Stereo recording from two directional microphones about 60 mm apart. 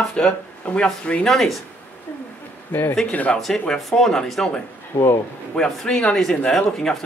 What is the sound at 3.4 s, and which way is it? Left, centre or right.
A man's voice, centre.